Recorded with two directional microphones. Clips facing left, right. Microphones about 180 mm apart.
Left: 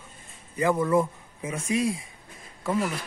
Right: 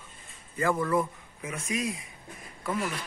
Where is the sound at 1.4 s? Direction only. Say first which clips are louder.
Left 6 dB; 30° left (ahead or behind).